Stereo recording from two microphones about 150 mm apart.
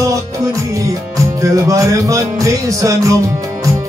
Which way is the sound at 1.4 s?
20° right (ahead or behind).